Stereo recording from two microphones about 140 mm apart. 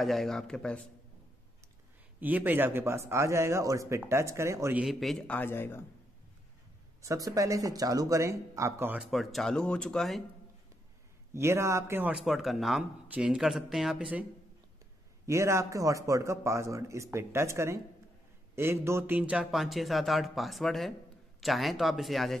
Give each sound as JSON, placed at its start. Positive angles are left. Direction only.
{"t": 0.0, "sound": "speech", "side_deg": 0}
{"t": 2.1, "sound": "a man's voice", "side_deg": -10}
{"t": 4.7, "sound": "a man's voice", "side_deg": 0}
{"t": 7.0, "sound": "a man's voice", "side_deg": -25}
{"t": 9.0, "sound": "speech", "side_deg": 0}
{"t": 11.3, "sound": "speech", "side_deg": -20}
{"t": 15.2, "sound": "a man's voice", "side_deg": -20}